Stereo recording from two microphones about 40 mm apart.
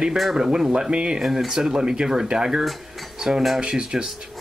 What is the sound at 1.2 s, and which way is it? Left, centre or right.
Speech, centre.